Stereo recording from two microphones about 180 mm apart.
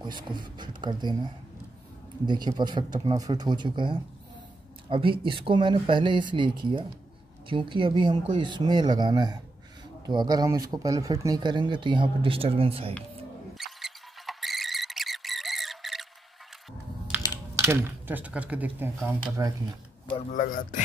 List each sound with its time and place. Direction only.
0.0 s speech: 25° right (ahead or behind)
13.6 s mouse: centre (ahead or behind)
17.6 s speech: 15° right (ahead or behind)
19.2 s speech: 20° right (ahead or behind)
20.3 s a man's voice: 50° left (ahead or behind)